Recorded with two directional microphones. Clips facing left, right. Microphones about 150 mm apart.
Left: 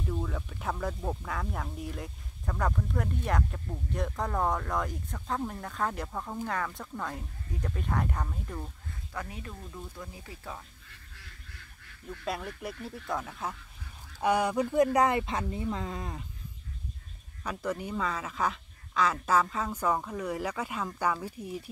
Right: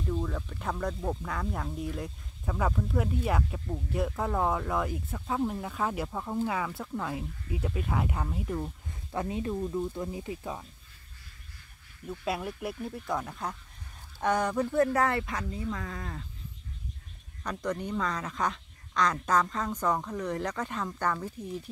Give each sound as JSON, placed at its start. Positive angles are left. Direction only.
{"t": 0.0, "sound": "speech", "side_deg": 0}
{"t": 9.1, "sound": "speech", "side_deg": -25}
{"t": 12.1, "sound": "speech", "side_deg": -5}
{"t": 17.4, "sound": "speech", "side_deg": 5}